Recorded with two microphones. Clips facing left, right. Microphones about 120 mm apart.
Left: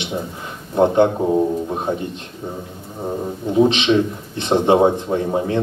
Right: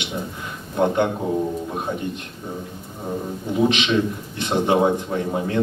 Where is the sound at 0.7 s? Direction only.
25° left (ahead or behind).